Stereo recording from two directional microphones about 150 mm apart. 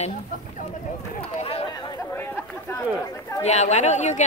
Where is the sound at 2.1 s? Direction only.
15° left (ahead or behind).